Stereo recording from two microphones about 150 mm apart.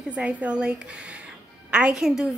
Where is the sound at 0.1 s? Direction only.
10° right (ahead or behind).